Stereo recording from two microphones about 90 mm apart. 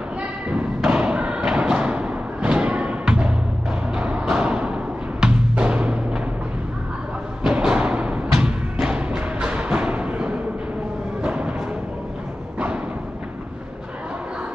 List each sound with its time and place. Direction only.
0.8 s thump: 10° right (ahead or behind)
3.9 s music: 10° right (ahead or behind)
7.4 s music: 10° right (ahead or behind)